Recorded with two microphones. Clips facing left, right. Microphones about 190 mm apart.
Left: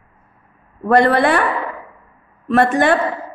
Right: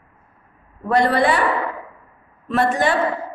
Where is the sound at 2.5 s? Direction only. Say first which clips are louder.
Left 5 dB; 55° left (ahead or behind).